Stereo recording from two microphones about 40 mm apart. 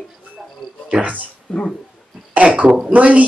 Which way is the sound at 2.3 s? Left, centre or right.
Right.